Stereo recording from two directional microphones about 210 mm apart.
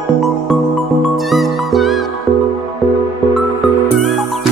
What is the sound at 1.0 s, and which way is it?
Music, centre (ahead or behind).